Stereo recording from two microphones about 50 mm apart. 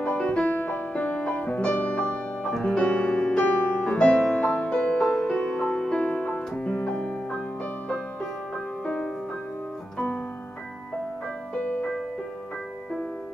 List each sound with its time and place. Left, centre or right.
0.0 s music: left
2.5 s music: centre
2.8 s music: left
3.4 s music: left
9.9 s keyboard: left
11.5 s music: left